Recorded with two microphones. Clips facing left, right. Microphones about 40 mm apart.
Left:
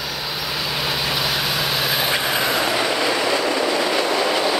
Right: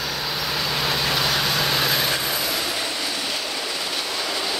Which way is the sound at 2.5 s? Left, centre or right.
Left.